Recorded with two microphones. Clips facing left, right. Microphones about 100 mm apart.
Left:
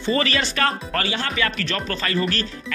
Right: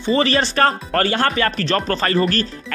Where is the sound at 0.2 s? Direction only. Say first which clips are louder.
Right 6 dB; 35° right (ahead or behind).